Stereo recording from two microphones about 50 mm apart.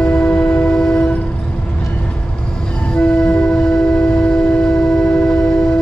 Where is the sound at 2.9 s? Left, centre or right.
Centre.